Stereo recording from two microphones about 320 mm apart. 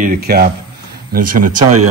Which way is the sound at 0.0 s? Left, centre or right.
Right.